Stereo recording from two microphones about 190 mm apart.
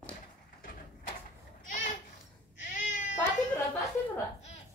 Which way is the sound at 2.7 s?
40° left (ahead or behind).